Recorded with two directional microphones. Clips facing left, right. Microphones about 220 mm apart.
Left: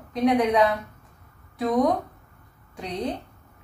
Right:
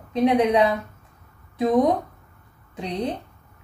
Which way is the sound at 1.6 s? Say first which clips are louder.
Right 3 dB; 25° right (ahead or behind).